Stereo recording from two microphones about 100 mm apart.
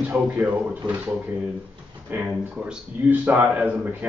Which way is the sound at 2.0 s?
15° right (ahead or behind).